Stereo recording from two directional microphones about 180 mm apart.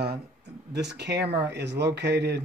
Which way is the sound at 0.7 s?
70° right (ahead or behind).